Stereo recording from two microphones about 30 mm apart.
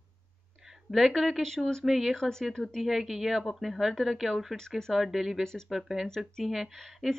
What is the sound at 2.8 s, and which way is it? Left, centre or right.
Speech, centre.